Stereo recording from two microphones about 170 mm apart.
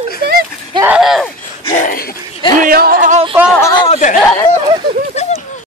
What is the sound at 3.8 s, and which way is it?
Speech, 45° left (ahead or behind).